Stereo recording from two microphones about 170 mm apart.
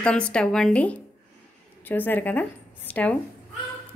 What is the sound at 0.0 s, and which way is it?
A woman's voice, 5° left (ahead or behind).